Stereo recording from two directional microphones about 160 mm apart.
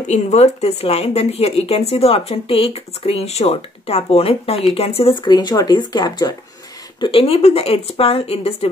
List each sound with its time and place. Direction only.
0.1 s speech: 45° left (ahead or behind); by 6.3 s 25° left (ahead or behind)
7.0 s speech: 35° left (ahead or behind)